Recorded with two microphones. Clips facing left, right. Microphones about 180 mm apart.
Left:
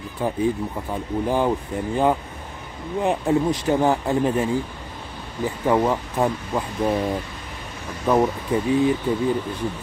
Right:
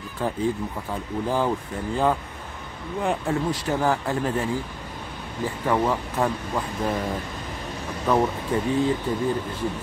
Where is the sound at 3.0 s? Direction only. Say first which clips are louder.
Left 4 dB; 20° left (ahead or behind).